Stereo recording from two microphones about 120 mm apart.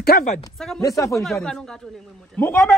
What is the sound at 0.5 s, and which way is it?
Speech, 5° left (ahead or behind).